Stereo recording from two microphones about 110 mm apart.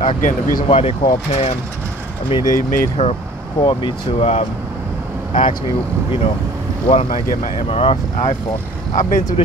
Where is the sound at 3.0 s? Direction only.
90° left.